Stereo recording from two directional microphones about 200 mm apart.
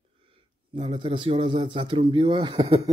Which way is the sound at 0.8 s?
25° right (ahead or behind).